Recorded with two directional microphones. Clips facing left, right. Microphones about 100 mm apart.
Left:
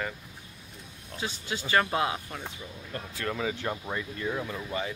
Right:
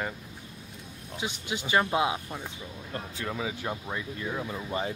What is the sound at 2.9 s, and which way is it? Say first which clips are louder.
Speech: right 1 dB; 25° right (ahead or behind).